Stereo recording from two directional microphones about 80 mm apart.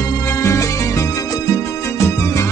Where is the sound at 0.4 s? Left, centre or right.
Left.